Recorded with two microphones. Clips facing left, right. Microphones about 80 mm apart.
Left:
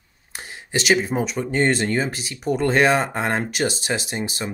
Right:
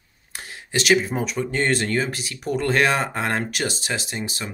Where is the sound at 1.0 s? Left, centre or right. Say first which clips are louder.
Left 2 dB; centre.